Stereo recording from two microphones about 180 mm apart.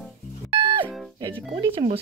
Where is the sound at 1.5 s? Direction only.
30° right (ahead or behind).